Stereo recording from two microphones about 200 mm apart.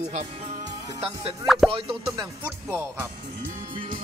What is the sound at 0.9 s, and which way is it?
Music, 30° right (ahead or behind).